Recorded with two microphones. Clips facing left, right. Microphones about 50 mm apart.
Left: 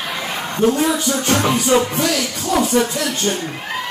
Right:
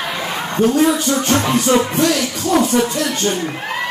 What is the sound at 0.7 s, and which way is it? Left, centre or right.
A man's voice, centre.